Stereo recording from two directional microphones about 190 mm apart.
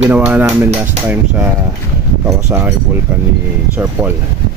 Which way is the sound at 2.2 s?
15° right (ahead or behind).